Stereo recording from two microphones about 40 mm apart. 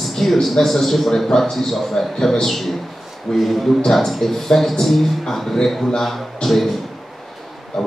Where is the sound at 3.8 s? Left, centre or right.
Centre.